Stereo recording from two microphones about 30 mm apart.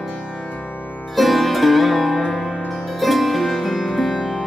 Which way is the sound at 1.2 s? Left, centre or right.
Centre.